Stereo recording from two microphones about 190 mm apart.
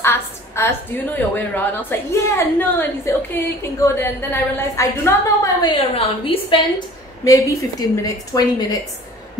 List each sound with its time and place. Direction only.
0.0 s a woman's voice: 15° left (ahead or behind)